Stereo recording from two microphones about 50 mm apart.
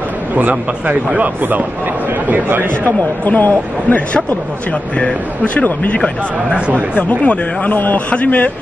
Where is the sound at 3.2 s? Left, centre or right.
Left.